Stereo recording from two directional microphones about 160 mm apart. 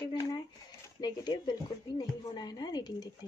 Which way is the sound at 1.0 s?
25° left (ahead or behind).